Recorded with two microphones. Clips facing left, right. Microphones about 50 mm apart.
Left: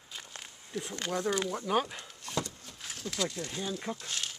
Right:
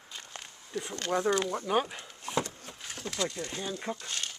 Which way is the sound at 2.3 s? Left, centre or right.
Right.